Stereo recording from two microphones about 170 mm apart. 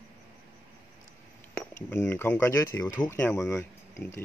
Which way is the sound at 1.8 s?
15° left (ahead or behind).